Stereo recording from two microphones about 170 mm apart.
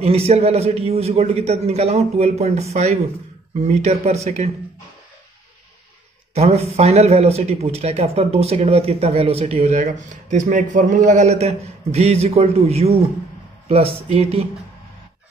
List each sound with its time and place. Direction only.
0.0 s speech: 35° right (ahead or behind)
6.3 s speech: 40° right (ahead or behind)